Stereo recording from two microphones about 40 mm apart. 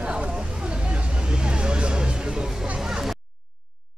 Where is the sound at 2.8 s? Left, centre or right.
Centre.